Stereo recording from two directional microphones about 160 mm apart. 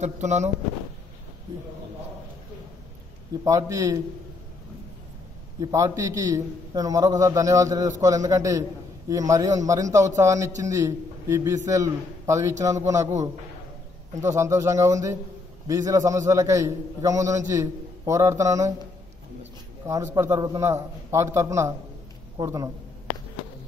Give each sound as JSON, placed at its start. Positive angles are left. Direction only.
{"t": 0.0, "sound": "speech", "side_deg": -45}
{"t": 3.4, "sound": "a man's voice", "side_deg": -20}
{"t": 5.6, "sound": "a man's voice", "side_deg": -20}
{"t": 19.9, "sound": "a man's voice", "side_deg": -20}